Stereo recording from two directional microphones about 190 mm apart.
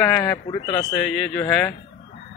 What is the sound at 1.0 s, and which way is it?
Speech, 5° left (ahead or behind).